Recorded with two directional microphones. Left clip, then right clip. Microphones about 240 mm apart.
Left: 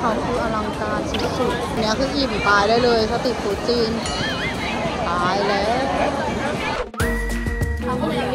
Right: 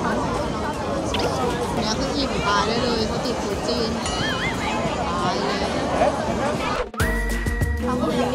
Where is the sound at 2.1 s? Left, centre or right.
Centre.